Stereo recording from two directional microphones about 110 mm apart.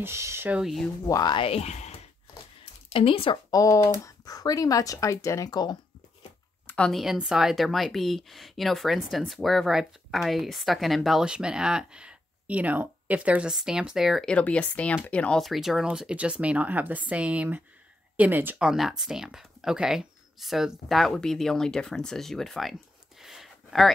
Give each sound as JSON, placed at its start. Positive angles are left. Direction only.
{"t": 0.0, "sound": "speech", "side_deg": -25}
{"t": 0.5, "sound": "speech", "side_deg": -5}
{"t": 1.0, "sound": "speech", "side_deg": 30}
{"t": 1.3, "sound": "speech", "side_deg": 60}
{"t": 2.9, "sound": "speech", "side_deg": 55}
{"t": 3.5, "sound": "speech", "side_deg": 30}
{"t": 6.9, "sound": "speech", "side_deg": 0}
{"t": 14.2, "sound": "speech", "side_deg": 10}
{"t": 18.6, "sound": "speech", "side_deg": -5}
{"t": 23.2, "sound": "a sound", "side_deg": 0}